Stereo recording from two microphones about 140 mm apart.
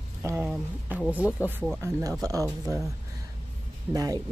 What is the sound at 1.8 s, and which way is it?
Speech, 25° right (ahead or behind).